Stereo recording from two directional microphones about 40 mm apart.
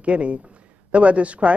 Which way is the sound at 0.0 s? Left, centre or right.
Right.